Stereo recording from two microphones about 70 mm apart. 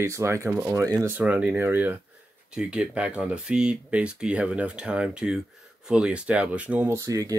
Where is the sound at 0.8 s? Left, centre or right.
Right.